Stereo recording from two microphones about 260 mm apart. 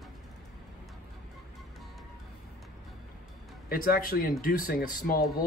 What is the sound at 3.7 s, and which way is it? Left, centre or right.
A man's voice, left.